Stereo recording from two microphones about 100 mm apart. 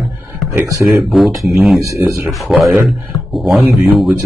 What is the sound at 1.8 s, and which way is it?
Speech, 35° right (ahead or behind).